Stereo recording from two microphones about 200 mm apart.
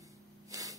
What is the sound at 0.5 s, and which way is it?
Spray, 15° right (ahead or behind).